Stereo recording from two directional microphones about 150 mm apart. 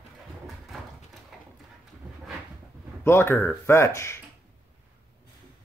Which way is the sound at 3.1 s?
15° left (ahead or behind).